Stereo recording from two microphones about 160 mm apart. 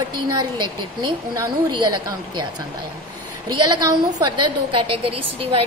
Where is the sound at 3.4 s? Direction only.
25° right (ahead or behind).